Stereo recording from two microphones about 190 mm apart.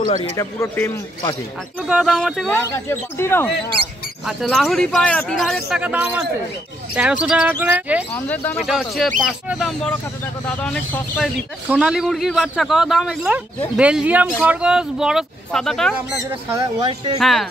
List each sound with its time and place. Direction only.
0.1 s a man's voice: 20° left (ahead or behind)
1.8 s speech: 5° right (ahead or behind)
2.5 s a man's voice: 10° left (ahead or behind)
4.3 s speech: centre (ahead or behind)
8.1 s a man's voice: 15° left (ahead or behind)
8.5 s a man's voice: centre (ahead or behind)
16.3 s speech: 15° right (ahead or behind)
16.8 s speech: 30° right (ahead or behind)
17.2 s speech: centre (ahead or behind)